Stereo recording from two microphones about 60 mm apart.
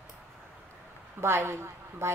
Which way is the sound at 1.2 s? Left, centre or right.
Right.